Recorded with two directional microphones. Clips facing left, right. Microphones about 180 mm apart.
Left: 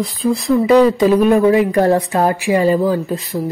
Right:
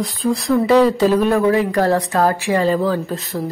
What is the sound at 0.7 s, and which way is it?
A woman's voice, 15° left (ahead or behind).